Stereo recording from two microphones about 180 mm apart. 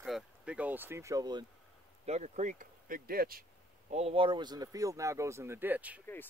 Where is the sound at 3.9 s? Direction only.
35° right (ahead or behind); by 6.0 s 10° right (ahead or behind).